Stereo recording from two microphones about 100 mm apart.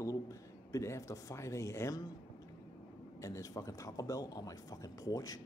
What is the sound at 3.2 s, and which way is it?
A man's voice, 35° left (ahead or behind).